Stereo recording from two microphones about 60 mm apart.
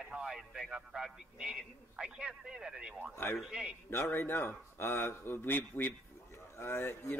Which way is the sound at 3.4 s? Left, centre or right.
Centre.